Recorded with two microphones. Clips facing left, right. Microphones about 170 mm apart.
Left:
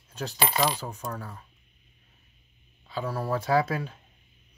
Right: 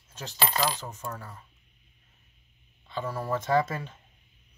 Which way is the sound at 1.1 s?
Centre (ahead or behind).